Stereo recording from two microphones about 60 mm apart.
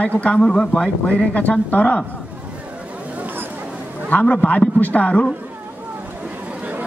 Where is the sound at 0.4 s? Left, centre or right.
Centre.